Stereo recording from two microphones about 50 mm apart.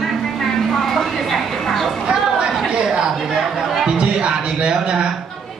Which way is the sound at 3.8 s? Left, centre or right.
Centre.